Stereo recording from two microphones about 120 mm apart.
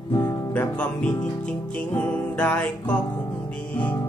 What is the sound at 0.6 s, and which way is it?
Music, 10° left (ahead or behind).